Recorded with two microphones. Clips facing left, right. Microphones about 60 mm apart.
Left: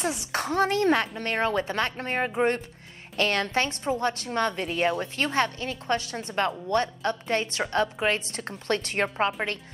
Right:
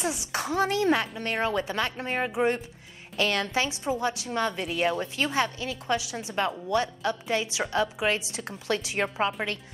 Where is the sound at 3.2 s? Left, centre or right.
Left.